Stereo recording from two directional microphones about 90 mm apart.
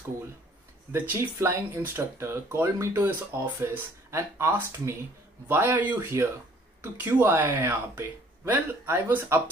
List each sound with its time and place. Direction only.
1.4 s speech: 25° right (ahead or behind)
5.9 s speech: 30° right (ahead or behind)